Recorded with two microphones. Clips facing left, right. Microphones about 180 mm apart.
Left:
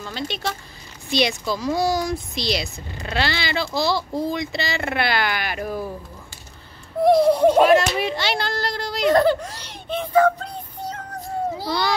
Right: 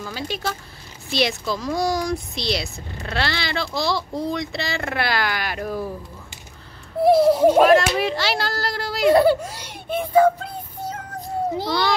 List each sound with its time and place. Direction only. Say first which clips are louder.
0.0 s speech: even; 5° right (ahead or behind)
7.0 s speech: even; 5° right (ahead or behind)